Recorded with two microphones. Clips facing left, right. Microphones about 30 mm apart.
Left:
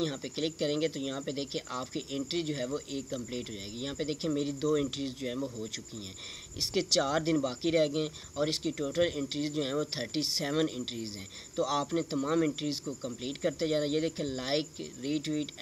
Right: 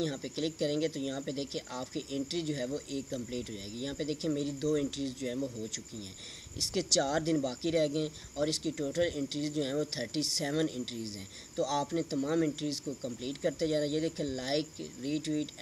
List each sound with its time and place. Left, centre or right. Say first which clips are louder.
0.0 s speech: left 1 dB; centre